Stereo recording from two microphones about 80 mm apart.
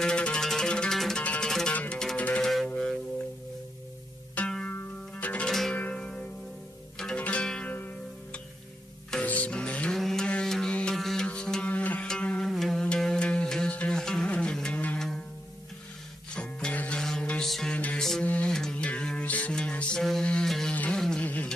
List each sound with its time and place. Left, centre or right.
0.0 s music: centre
1.2 s music: centre
2.4 s music: centre
4.4 s music: centre
4.6 s music: centre
5.5 s music: centre
7.0 s zither: centre
9.1 s music: centre
16.3 s music: centre
17.7 s music: centre